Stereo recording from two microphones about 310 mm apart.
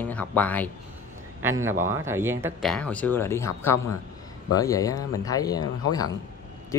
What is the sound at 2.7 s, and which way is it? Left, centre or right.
Speech, centre.